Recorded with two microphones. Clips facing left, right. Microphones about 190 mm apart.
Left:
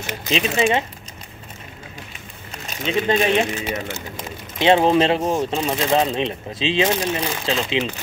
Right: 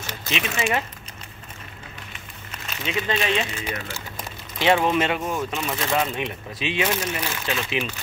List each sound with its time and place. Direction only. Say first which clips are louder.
0.3 s speech: left 6 dB; 30° left (ahead or behind)
2.6 s speech: left 6 dB; 40° left (ahead or behind)
4.6 s speech: left 5 dB; 25° left (ahead or behind)
5.8 s speech: left 5 dB; 25° left (ahead or behind)